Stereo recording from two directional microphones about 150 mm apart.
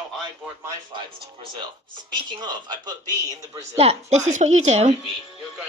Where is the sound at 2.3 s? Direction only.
30° right (ahead or behind).